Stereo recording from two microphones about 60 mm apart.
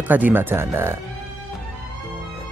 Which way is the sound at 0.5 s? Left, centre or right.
Right.